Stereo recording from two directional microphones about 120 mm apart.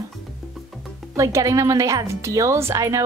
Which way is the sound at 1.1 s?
25° right (ahead or behind).